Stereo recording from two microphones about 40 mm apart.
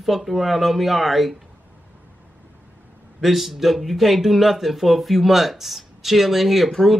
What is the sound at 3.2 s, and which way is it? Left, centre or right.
Speech, centre.